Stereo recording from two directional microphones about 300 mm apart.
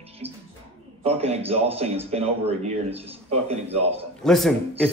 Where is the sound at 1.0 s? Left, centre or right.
Centre.